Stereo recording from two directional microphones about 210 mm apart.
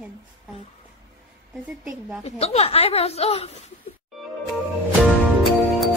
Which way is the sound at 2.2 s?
30° left (ahead or behind).